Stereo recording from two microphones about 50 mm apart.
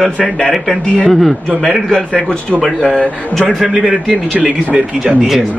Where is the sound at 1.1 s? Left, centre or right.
Centre.